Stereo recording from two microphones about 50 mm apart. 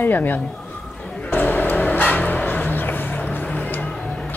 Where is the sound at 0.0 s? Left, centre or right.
Left.